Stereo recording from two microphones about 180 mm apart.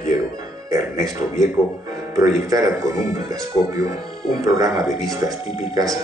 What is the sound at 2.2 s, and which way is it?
Speech, 20° right (ahead or behind).